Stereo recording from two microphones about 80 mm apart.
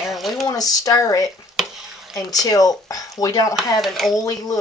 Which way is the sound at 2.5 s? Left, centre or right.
Left.